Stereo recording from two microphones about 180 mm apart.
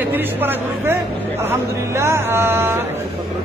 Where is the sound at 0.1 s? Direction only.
10° right (ahead or behind).